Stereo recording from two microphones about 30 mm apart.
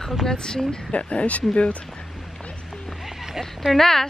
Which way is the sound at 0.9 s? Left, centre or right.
Left.